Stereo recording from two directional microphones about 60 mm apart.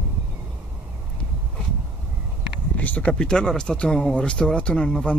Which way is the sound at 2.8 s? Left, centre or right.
Left.